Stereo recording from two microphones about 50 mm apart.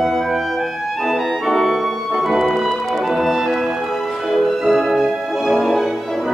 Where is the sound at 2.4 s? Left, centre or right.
Centre.